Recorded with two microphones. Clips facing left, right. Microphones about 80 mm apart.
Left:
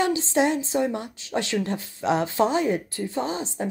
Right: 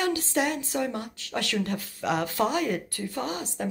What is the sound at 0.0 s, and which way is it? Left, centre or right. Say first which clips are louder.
A woman's voice: left 4 dB; left.